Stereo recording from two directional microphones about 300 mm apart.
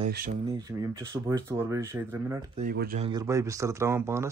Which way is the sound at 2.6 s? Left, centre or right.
Right.